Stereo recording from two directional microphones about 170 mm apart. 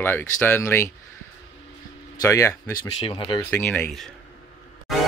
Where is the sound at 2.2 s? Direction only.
20° left (ahead or behind).